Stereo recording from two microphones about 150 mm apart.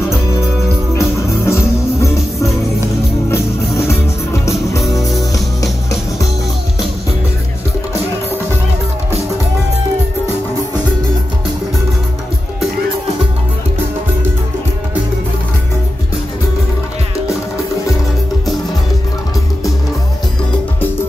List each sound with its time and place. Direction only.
0.9 s music: 20° left (ahead or behind)
4.5 s music: centre (ahead or behind)
5.6 s music: 20° left (ahead or behind)